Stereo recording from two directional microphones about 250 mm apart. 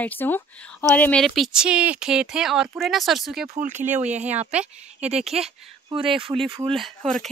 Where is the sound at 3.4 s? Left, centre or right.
Right.